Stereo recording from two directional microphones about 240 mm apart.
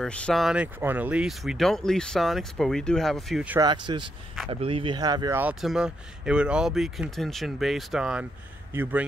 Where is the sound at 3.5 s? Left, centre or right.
Centre.